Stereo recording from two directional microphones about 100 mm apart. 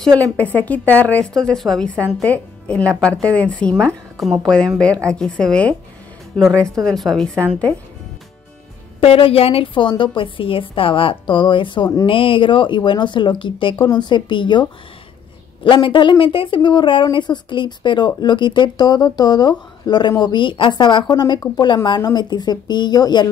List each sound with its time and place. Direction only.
0.6 s a woman's voice: 15° left (ahead or behind)
4.2 s speech: centre (ahead or behind)
4.7 s a woman's voice: 10° left (ahead or behind)
6.8 s speech: 5° left (ahead or behind)
9.0 s a woman's voice: 70° left (ahead or behind); by 23.2 s 45° left (ahead or behind)